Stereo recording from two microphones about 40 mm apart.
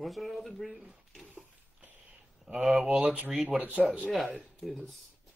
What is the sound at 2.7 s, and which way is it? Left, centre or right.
Speech, centre.